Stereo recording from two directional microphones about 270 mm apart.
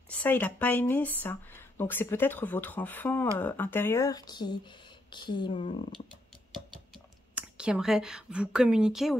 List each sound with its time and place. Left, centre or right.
0.1 s speech: centre
7.3 s a woman's voice: centre